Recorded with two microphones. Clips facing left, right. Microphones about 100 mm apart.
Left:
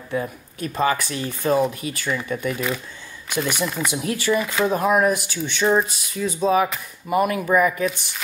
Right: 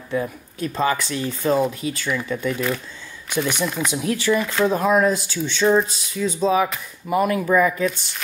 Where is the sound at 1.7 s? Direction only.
55° left (ahead or behind).